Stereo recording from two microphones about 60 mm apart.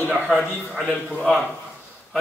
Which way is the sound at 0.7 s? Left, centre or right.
Centre.